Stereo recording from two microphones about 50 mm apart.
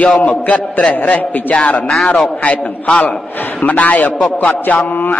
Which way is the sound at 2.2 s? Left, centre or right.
Left.